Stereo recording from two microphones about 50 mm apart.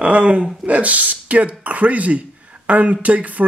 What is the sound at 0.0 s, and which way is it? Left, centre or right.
Speech, right.